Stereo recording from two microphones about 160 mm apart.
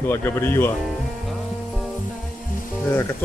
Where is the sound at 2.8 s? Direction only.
15° left (ahead or behind).